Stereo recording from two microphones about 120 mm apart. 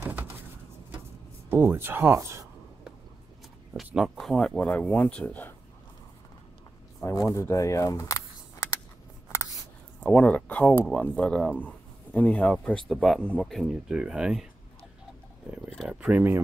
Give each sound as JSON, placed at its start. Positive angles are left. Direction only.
{"t": 0.0, "sound": "a sound", "side_deg": -15}
{"t": 1.5, "sound": "speech", "side_deg": -20}
{"t": 3.7, "sound": "speech", "side_deg": 0}
{"t": 7.0, "sound": "speech", "side_deg": 25}
{"t": 9.9, "sound": "speech", "side_deg": 10}
{"t": 15.9, "sound": "speech", "side_deg": -10}